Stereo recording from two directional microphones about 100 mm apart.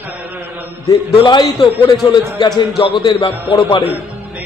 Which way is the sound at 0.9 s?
40° left (ahead or behind).